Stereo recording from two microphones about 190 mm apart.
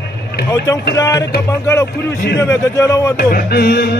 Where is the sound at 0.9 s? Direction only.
20° left (ahead or behind).